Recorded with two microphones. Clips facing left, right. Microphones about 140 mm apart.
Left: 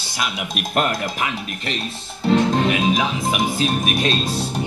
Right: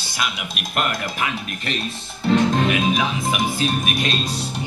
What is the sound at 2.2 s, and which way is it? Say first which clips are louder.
Speech: left 1 dB; 30° left (ahead or behind).